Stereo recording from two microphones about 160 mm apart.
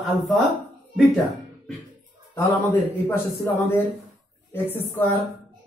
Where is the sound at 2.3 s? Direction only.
15° left (ahead or behind).